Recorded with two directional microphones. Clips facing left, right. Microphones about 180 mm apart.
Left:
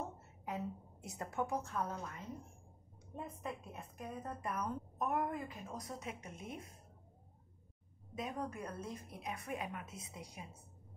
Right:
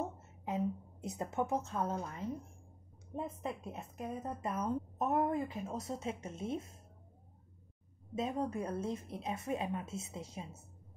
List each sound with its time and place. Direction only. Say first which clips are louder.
0.5 s a sound: right 5 dB; 20° right (ahead or behind)
1.0 s a woman's voice: right 4 dB; 20° right (ahead or behind)
8.1 s a woman's voice: right 6 dB; 25° right (ahead or behind)